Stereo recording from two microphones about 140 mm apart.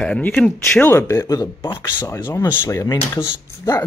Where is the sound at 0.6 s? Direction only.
15° left (ahead or behind).